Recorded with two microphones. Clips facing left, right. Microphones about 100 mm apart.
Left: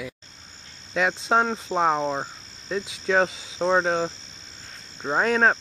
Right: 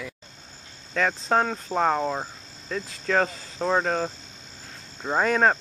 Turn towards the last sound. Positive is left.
turn(degrees=-5)  # may be behind; listen again after turning